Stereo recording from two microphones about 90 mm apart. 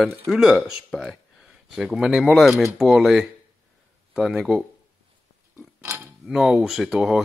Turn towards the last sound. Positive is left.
turn(degrees=-5)  # may be behind; listen again after turning